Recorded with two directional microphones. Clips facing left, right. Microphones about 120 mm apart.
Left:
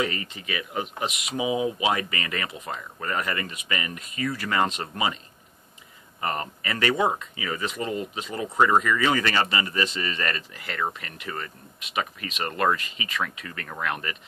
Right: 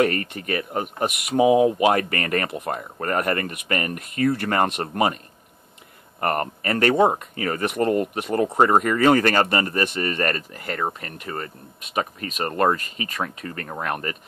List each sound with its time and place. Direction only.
0.0 s speech: 60° right (ahead or behind)
6.2 s speech: 55° right (ahead or behind); by 13.9 s 35° right (ahead or behind)